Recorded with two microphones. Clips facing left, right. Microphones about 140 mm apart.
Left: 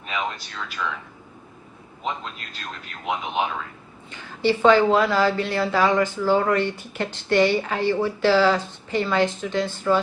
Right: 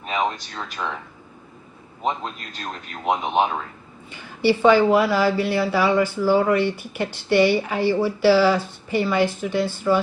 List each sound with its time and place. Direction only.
0.0 s speech: 40° right (ahead or behind)
2.0 s speech: 40° right (ahead or behind)
4.1 s speech: 10° right (ahead or behind)